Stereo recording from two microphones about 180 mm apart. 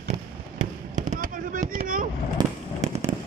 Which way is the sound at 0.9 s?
45° right (ahead or behind).